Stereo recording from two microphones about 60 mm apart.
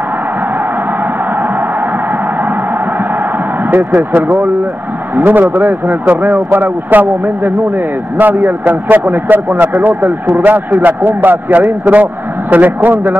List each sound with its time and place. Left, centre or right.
3.7 s a man's voice: right